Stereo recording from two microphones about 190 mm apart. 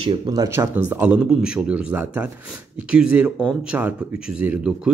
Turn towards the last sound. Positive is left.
turn(degrees=-5)  # may be behind; listen again after turning